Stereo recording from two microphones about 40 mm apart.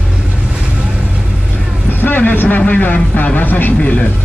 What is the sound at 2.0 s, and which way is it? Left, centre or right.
Vehicle, left.